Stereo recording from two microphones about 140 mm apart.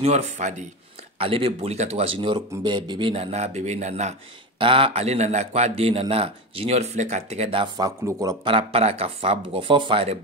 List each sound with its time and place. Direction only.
0.0 s speech: 55° right (ahead or behind)
1.1 s a man's voice: 45° right (ahead or behind)
4.6 s a man's voice: 40° right (ahead or behind); by 8.4 s 20° right (ahead or behind)
8.5 s a man's voice: 45° right (ahead or behind)